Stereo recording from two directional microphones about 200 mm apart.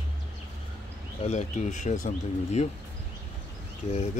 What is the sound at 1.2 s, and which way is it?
Speech, 35° left (ahead or behind).